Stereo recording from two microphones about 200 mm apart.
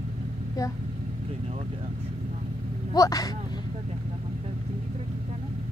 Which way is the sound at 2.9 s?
20° left (ahead or behind).